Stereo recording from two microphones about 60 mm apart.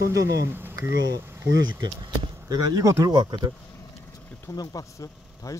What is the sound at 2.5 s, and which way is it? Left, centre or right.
Speech, right.